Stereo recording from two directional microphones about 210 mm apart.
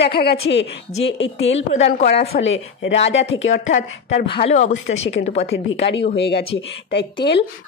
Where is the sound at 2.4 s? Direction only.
60° left (ahead or behind).